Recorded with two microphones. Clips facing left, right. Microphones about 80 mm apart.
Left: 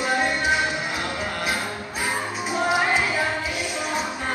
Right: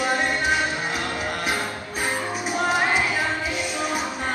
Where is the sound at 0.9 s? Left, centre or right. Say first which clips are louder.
Right 1 dB; centre.